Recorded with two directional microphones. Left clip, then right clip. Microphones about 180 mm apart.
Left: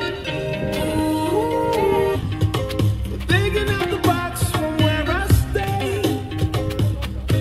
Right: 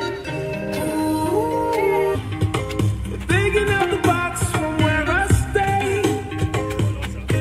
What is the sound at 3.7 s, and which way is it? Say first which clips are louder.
Music: right 2 dB; 30° left (ahead or behind).